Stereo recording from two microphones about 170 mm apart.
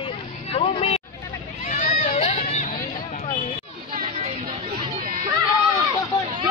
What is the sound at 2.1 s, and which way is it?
Hubbub, 40° left (ahead or behind).